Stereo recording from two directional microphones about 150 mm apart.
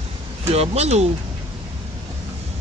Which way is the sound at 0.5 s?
45° right (ahead or behind).